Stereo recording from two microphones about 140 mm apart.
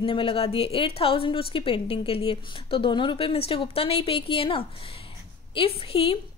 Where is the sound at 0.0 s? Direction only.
40° left (ahead or behind).